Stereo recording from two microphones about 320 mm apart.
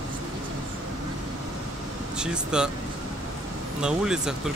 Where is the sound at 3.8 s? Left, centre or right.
Centre.